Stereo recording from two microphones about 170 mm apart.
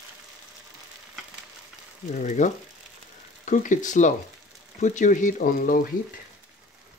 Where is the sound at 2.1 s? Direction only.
45° left (ahead or behind).